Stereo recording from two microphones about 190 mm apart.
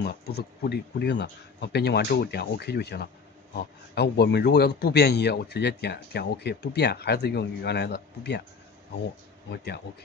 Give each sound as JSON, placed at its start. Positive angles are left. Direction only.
{"t": 0.0, "sound": "a man's voice", "side_deg": 55}